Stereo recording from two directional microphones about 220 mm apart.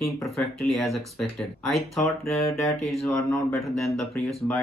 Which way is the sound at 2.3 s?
Centre (ahead or behind).